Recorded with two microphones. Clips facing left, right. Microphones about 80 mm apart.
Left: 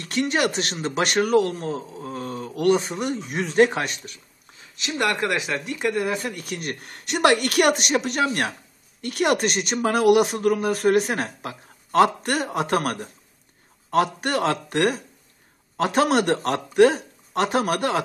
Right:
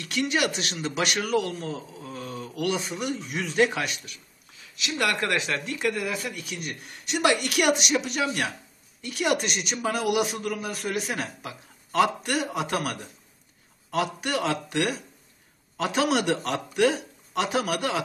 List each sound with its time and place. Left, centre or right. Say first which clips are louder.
0.0 s speech: left 3 dB; left
5.3 s speech: left 2 dB; centre; by 6.4 s left
6.5 s speech: left 5 dB; left
14.2 s speech: left 4 dB; left